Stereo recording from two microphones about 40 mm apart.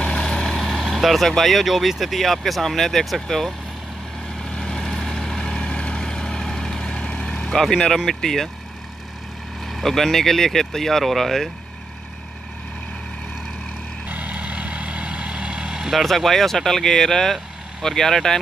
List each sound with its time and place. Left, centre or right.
0.0 s vehicle: centre
0.7 s speech: centre
4.4 s vehicle: centre
5.6 s vehicle: left
7.0 s vehicle: left
7.4 s speech: centre
9.7 s speech: centre
14.0 s vehicle: right
15.9 s speech: centre